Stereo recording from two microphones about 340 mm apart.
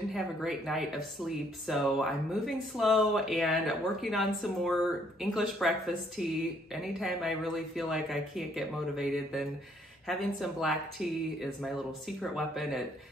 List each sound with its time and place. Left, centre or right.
0.1 s speech: centre